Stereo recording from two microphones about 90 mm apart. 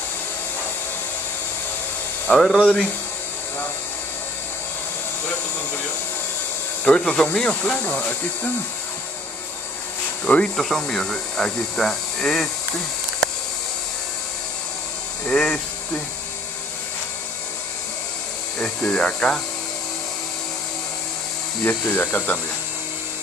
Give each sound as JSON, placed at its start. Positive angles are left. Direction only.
{"t": 2.2, "sound": "speech", "side_deg": 5}
{"t": 6.8, "sound": "speech", "side_deg": 10}
{"t": 10.2, "sound": "speech", "side_deg": 15}
{"t": 10.5, "sound": "speech", "side_deg": 5}
{"t": 15.2, "sound": "speech", "side_deg": 5}
{"t": 18.6, "sound": "speech", "side_deg": 10}
{"t": 21.6, "sound": "speech", "side_deg": 20}